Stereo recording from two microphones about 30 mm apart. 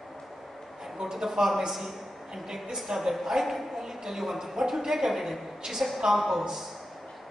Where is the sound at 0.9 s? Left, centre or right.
Centre.